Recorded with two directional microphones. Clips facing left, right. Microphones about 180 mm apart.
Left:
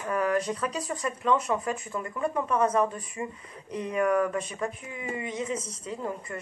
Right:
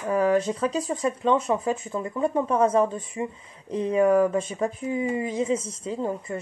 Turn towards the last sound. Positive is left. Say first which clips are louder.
# right 5 dB
turn(degrees=-30)  # may be behind; listen again after turning